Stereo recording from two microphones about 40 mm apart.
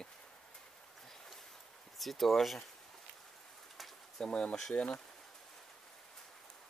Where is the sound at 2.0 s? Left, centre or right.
Centre.